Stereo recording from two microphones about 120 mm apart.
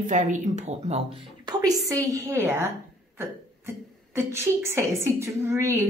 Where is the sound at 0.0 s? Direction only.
90° right; by 1.0 s 65° right (ahead or behind).